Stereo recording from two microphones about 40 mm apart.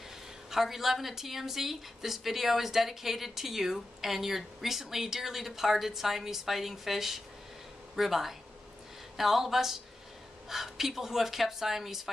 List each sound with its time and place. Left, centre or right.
0.5 s a woman's voice: centre